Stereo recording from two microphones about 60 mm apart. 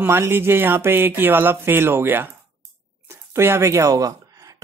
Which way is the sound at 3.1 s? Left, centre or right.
Right.